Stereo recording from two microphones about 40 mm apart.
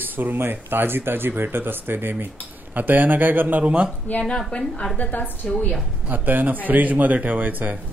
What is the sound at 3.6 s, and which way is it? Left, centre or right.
Speech, right.